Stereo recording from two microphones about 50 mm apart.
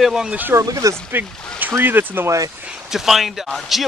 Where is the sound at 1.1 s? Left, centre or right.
Right.